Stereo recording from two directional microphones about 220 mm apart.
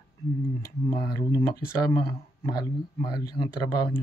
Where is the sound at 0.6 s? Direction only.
15° left (ahead or behind).